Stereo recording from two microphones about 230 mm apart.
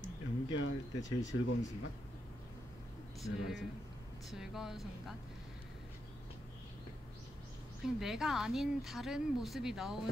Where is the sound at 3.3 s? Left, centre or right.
Left.